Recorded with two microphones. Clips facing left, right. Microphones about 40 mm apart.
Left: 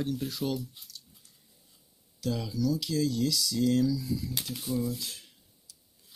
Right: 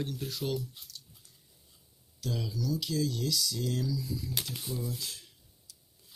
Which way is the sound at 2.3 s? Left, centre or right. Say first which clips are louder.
Left 3 dB; left.